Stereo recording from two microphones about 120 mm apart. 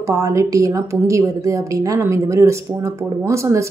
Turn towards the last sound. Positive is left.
turn(degrees=-25)  # may be behind; listen again after turning